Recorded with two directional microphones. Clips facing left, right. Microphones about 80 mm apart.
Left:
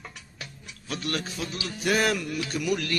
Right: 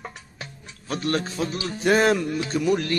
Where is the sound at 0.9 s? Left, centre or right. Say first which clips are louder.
Right 6 dB; right.